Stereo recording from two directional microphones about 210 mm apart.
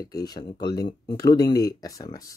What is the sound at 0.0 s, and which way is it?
Speech, 20° left (ahead or behind).